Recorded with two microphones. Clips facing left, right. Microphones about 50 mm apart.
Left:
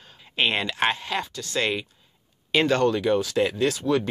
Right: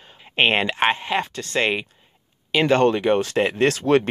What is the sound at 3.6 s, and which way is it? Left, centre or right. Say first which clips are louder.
Speech: right 5 dB; right.